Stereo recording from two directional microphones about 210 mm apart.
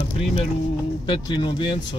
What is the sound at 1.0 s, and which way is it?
Speech, 20° left (ahead or behind).